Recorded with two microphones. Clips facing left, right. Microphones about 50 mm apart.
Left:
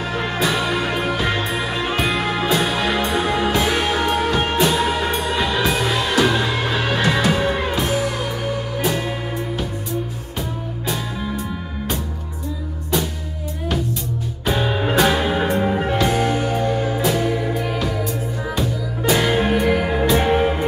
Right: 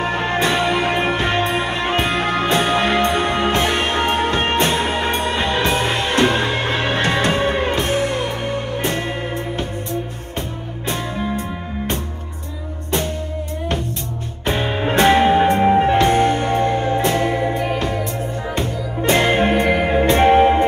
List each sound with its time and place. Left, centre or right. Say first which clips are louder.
0.0 s music: right 3 dB; right
12.9 s music: even; right
14.4 s music: even; right
14.7 s music: right 1 dB; centre
15.0 s music: right 6 dB; right
15.6 s music: right 6 dB; right
15.9 s music: right 4 dB; right
19.0 s music: right 2 dB; right
19.7 s music: right 2 dB; right
20.1 s music: right 6 dB; right